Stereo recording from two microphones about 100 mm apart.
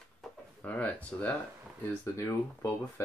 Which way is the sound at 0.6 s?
15° left (ahead or behind).